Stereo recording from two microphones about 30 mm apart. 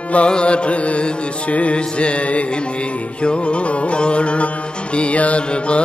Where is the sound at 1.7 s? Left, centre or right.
Left.